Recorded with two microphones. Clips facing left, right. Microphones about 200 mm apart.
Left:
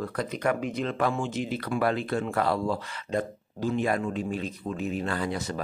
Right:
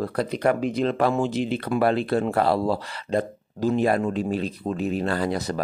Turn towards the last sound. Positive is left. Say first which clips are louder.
# right 5 dB
turn(degrees=-40)  # may be behind; listen again after turning